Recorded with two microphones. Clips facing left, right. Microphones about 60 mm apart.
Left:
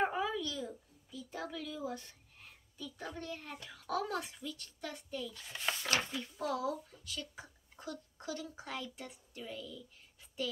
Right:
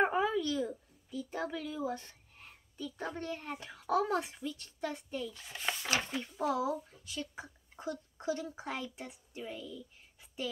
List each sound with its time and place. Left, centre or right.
0.0 s a child's voice: right
5.5 s speech: centre
6.1 s speech: right